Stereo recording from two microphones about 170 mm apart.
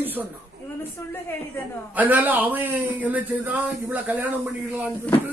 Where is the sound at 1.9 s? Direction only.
10° right (ahead or behind).